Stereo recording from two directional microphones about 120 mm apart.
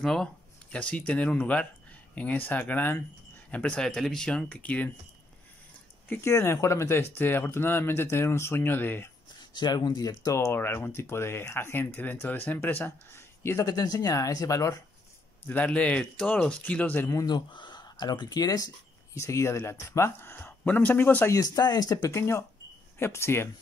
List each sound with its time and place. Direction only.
0.0 s speech: 5° left (ahead or behind)
6.0 s speech: 20° left (ahead or behind)
9.4 s speech: 40° left (ahead or behind); by 13.7 s 20° left (ahead or behind)
13.7 s speech: 30° left (ahead or behind)
15.4 s speech: 15° left (ahead or behind)
17.3 s speech: 40° left (ahead or behind); by 21.3 s 15° left (ahead or behind)
21.3 s speech: 30° left (ahead or behind)